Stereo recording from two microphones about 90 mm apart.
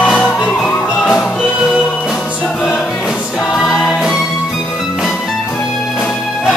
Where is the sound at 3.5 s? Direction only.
Centre (ahead or behind).